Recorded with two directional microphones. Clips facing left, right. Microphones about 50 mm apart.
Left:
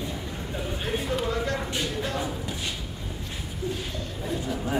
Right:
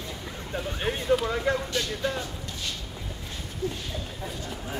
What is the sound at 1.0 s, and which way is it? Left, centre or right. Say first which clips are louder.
Speech: right 6 dB; centre.